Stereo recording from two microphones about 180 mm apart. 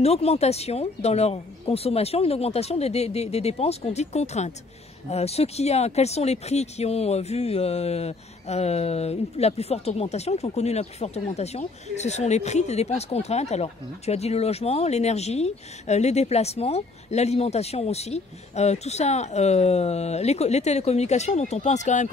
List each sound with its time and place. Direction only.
0.0 s speech: 35° left (ahead or behind)